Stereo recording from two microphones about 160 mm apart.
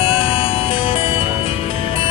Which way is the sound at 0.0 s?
35° left (ahead or behind).